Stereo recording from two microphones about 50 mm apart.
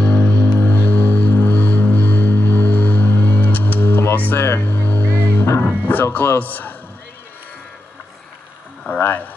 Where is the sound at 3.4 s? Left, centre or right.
Left.